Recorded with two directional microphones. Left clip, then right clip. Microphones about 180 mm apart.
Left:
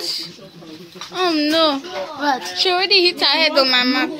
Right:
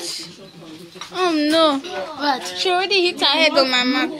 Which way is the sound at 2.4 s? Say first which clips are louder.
Left 2 dB; centre (ahead or behind).